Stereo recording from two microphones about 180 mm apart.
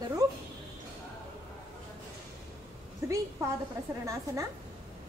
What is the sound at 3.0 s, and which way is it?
Speech, 15° right (ahead or behind).